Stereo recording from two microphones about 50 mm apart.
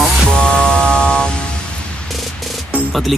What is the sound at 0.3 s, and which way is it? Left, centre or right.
Music, centre.